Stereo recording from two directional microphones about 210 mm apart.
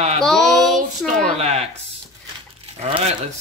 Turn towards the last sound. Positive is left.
turn(degrees=-30)  # may be behind; listen again after turning